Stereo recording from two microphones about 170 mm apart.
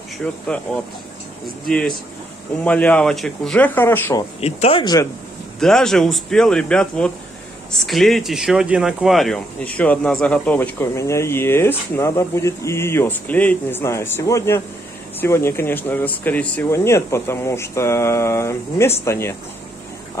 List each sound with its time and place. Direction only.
2.6 s speech: 10° left (ahead or behind)
4.4 s speech: 40° left (ahead or behind)
5.6 s speech: 5° left (ahead or behind)